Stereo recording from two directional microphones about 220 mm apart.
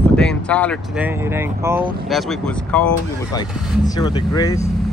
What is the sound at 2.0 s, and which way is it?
Speech, centre (ahead or behind).